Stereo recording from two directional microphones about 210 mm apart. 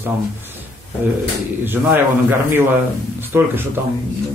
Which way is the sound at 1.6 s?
10° right (ahead or behind).